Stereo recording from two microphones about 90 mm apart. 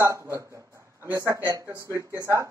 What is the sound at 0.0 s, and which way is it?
Speech, 35° right (ahead or behind).